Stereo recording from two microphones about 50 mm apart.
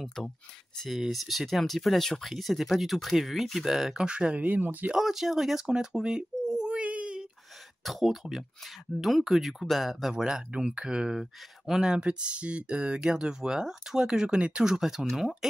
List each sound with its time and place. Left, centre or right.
0.0 s speech: centre
0.8 s speech: centre
4.0 s speech: right
4.9 s speech: centre
7.8 s speech: centre
10.2 s speech: centre